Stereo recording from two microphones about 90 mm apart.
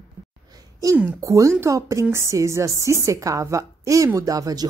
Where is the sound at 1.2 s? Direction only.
35° right (ahead or behind).